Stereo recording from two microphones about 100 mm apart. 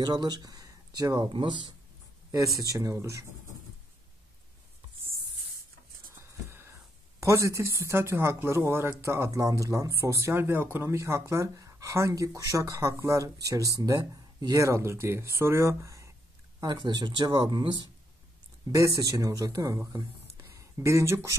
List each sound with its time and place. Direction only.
0.0 s speech: 45° right (ahead or behind)
1.3 s speech: 55° right (ahead or behind)
2.3 s speech: 35° right (ahead or behind)
6.1 s speech: 25° right (ahead or behind)
16.6 s speech: 50° right (ahead or behind)
18.7 s speech: 40° right (ahead or behind)